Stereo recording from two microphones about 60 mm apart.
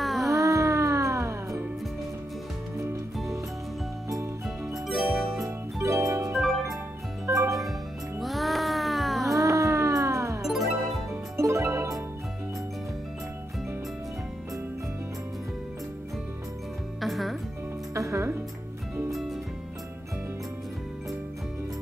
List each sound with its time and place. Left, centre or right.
0.0 s music: centre
0.3 s music: right
4.8 s music: centre
5.4 s music: right
6.3 s music: centre
7.2 s music: right
8.2 s music: centre
9.3 s music: right
17.0 s music: centre
17.9 s music: right
19.0 s music: centre